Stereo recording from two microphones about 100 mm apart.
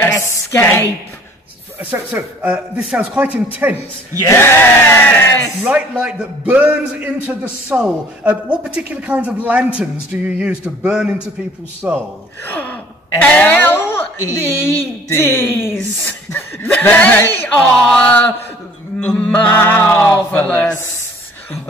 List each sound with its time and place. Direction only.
0.0 s a woman's voice: 25° left (ahead or behind)
1.8 s a man's voice: 20° right (ahead or behind)
3.6 s a man's voice: 25° right (ahead or behind)
4.2 s speech: 25° left (ahead or behind)
5.7 s a man's voice: 10° right (ahead or behind)
12.4 s speech: 20° left (ahead or behind)
17.6 s speech: 10° left (ahead or behind)